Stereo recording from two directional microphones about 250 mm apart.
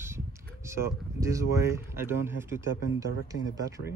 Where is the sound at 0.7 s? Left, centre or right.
Centre.